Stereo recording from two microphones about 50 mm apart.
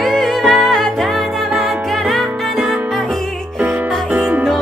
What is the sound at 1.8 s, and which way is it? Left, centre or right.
Music, centre.